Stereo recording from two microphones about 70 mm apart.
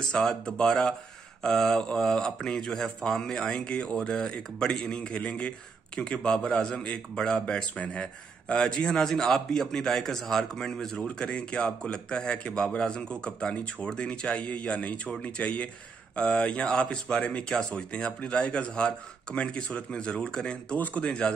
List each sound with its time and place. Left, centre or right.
0.1 s speech: centre
20.7 s speech: left